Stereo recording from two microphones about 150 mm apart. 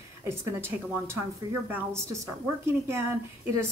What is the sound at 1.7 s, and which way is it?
A woman's voice, 20° right (ahead or behind).